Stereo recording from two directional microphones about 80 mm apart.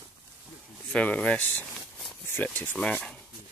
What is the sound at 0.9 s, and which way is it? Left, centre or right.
Speech, centre.